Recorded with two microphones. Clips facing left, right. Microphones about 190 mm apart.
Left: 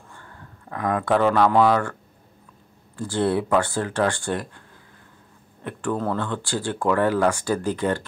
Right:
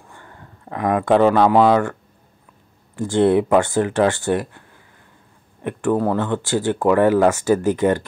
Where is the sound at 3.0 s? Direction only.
25° right (ahead or behind).